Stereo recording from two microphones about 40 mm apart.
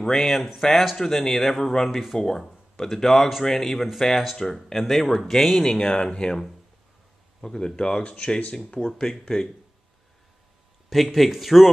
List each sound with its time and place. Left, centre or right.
0.0 s speech: centre
1.9 s speech: centre
2.1 s speech: centre
4.5 s speech: centre
7.4 s speech: centre
9.0 s speech: centre
11.1 s speech: centre